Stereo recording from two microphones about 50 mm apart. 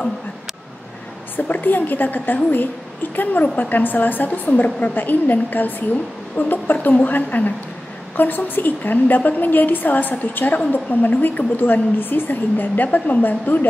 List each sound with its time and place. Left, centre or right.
1.3 s a woman's voice: left